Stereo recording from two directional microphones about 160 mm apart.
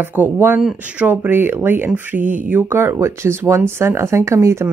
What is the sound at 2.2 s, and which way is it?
Speech, 50° right (ahead or behind).